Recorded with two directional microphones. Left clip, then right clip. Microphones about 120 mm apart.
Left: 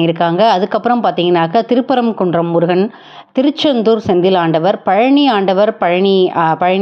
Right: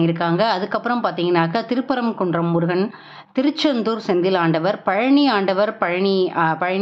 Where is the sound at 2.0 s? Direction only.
25° left (ahead or behind); by 6.8 s 45° left (ahead or behind).